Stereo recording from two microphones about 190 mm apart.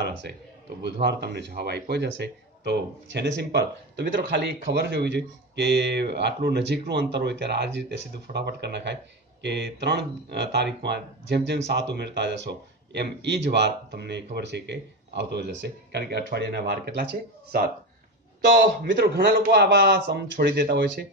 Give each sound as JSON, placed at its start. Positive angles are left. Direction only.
{"t": 1.0, "sound": "speech", "side_deg": -60}